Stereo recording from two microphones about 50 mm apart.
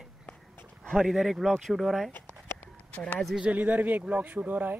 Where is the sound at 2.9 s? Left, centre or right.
Left.